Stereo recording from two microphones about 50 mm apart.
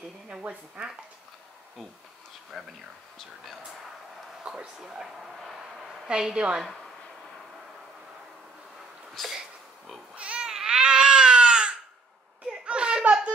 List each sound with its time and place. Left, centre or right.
0.8 s speech: right
2.5 s a woman's voice: centre
4.6 s a sound: centre
6.0 s a woman's voice: centre
6.6 s speech: centre
10.1 s a sound: right